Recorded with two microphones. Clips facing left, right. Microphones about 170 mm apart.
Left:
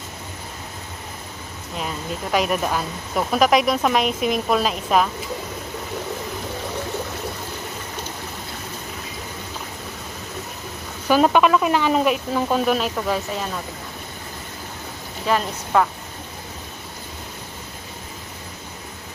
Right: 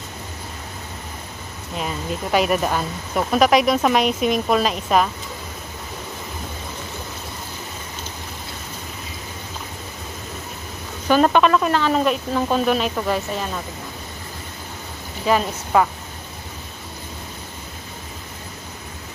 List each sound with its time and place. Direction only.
1.8 s speech: centre (ahead or behind)
11.1 s speech: 10° left (ahead or behind)
15.2 s speech: 5° right (ahead or behind)